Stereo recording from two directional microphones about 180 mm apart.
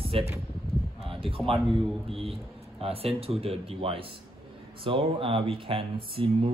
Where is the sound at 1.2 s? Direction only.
30° right (ahead or behind).